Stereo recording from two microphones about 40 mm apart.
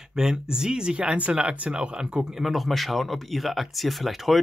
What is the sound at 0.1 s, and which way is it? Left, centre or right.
Speech, centre.